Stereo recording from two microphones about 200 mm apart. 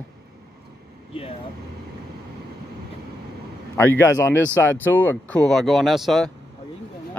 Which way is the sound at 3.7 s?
10° left (ahead or behind).